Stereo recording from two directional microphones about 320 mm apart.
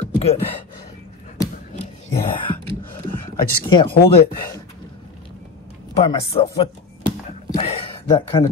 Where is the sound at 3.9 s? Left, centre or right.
Left.